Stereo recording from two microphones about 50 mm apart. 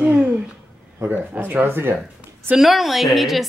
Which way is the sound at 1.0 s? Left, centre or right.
Right.